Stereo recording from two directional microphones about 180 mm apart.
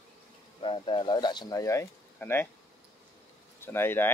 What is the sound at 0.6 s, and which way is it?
Speech, 30° left (ahead or behind).